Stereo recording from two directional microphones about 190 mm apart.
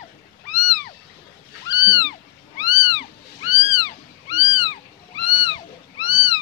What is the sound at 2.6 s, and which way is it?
Cat, 20° left (ahead or behind).